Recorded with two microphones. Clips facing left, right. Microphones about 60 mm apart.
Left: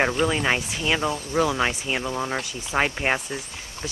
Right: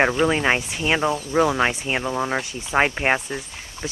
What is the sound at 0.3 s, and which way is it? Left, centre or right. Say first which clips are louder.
Speech: right 3 dB; right.